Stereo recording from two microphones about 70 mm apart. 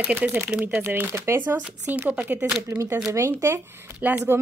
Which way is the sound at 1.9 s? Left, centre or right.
Right.